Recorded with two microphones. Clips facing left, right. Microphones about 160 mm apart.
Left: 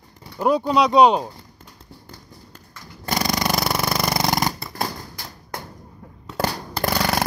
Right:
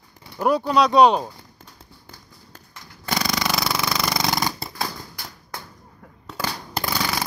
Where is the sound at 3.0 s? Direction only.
40° left (ahead or behind).